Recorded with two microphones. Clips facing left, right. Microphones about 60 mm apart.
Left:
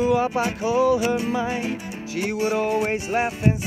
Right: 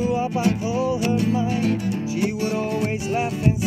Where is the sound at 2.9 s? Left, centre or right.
Left.